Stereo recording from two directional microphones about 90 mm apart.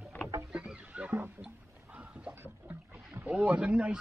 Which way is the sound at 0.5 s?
15° right (ahead or behind).